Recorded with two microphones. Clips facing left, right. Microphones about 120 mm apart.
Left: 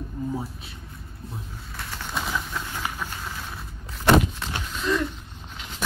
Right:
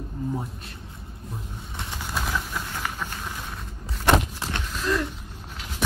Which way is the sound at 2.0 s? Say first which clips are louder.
Even; 5° right (ahead or behind).